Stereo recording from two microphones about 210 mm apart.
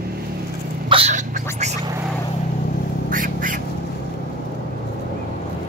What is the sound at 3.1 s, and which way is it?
Duck, 40° right (ahead or behind).